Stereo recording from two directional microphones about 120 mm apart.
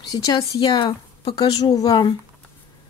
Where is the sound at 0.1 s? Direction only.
30° left (ahead or behind).